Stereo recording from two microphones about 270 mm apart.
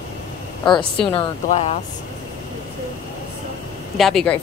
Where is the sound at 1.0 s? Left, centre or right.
Centre.